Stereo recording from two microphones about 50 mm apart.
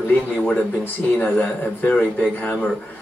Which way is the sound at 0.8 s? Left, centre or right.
Left.